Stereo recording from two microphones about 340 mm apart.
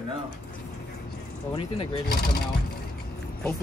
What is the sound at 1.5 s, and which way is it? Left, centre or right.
Speech, left.